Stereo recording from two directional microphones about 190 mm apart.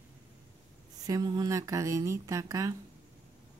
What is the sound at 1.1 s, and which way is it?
Speech, 20° right (ahead or behind).